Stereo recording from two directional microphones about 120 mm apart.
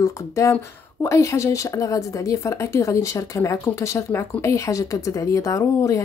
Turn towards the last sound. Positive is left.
turn(degrees=25)  # may be behind; listen again after turning